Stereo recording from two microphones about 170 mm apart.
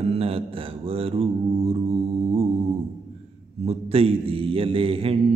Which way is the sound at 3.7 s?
35° right (ahead or behind).